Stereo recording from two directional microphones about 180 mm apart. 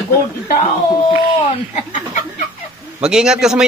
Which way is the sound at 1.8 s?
45° left (ahead or behind).